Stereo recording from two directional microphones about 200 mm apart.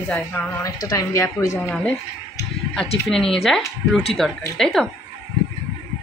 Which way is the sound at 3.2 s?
30° left (ahead or behind).